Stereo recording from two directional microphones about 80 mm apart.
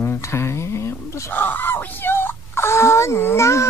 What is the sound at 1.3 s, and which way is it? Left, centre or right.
Speech, left.